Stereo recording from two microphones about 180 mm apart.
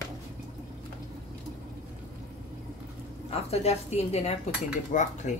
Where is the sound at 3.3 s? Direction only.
35° left (ahead or behind).